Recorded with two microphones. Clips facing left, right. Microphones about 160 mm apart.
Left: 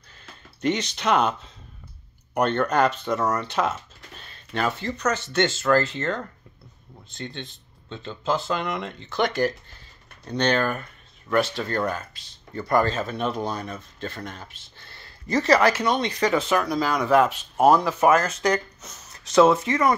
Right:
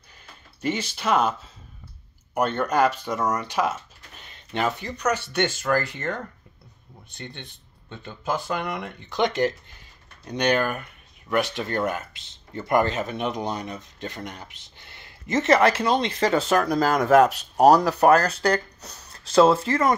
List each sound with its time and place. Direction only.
0.6 s speech: 5° right (ahead or behind); by 16.4 s 30° right (ahead or behind)
16.4 s speech: 45° right (ahead or behind); by 19.6 s 30° right (ahead or behind)